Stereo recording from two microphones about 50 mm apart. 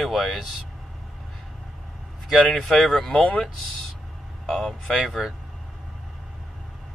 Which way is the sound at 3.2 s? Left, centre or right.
Left.